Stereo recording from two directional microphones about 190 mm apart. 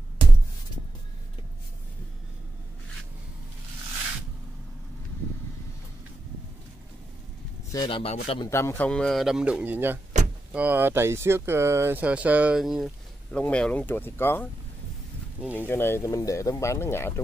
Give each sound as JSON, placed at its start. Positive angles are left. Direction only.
{"t": 7.7, "sound": "speech", "side_deg": 25}
{"t": 8.5, "sound": "speech", "side_deg": 15}
{"t": 10.1, "sound": "vehicle", "side_deg": -40}
{"t": 10.5, "sound": "speech", "side_deg": -10}
{"t": 15.5, "sound": "speech", "side_deg": 10}